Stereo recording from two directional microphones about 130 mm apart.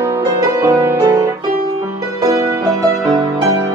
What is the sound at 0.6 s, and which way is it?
Music, 20° right (ahead or behind).